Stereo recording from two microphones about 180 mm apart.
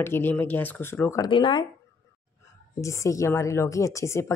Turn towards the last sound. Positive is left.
turn(degrees=15)  # may be behind; listen again after turning